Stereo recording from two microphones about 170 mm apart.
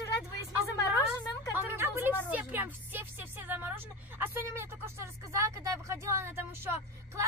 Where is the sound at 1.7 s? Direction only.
10° right (ahead or behind).